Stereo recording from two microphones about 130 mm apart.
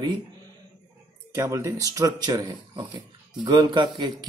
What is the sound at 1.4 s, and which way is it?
Speech, 25° right (ahead or behind).